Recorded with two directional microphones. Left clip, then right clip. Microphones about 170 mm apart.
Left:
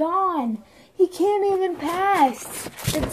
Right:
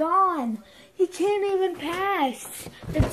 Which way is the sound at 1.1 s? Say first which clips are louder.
Left 3 dB; 25° left (ahead or behind).